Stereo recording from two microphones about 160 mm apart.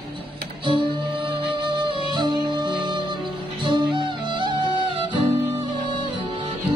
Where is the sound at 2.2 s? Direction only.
25° right (ahead or behind).